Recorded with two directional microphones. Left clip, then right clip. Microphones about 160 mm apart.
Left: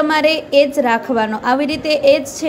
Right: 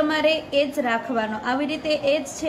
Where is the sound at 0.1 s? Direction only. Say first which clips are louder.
Left 7 dB; 35° left (ahead or behind).